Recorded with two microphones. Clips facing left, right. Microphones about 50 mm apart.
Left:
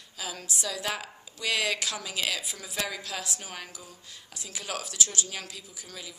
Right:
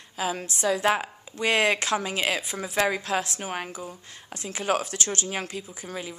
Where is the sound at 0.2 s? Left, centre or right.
Right.